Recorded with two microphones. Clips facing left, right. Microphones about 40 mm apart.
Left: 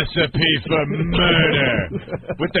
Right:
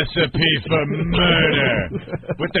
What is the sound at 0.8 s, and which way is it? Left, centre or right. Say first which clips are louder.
Speech: even; left.